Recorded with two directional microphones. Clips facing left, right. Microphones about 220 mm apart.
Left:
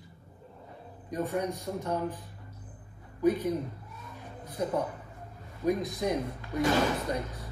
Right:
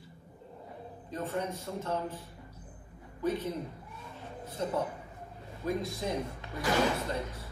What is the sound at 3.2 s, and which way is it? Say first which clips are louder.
Speech: left 6 dB; 15° left (ahead or behind).